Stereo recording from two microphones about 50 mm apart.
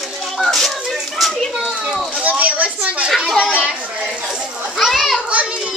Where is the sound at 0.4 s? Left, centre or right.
Centre.